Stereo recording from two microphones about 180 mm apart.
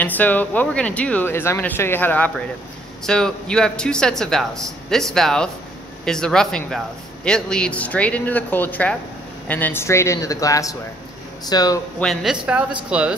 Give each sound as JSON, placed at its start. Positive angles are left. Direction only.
{"t": 0.0, "sound": "speech", "side_deg": 10}
{"t": 12.0, "sound": "speech", "side_deg": 0}